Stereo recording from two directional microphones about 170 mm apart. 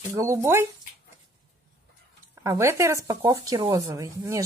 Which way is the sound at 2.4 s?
15° right (ahead or behind).